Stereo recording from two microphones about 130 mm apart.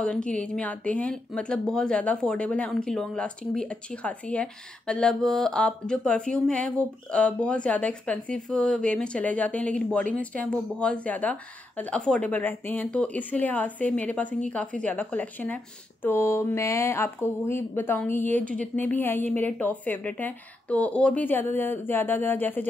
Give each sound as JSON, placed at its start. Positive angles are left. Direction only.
{"t": 0.0, "sound": "speech", "side_deg": 10}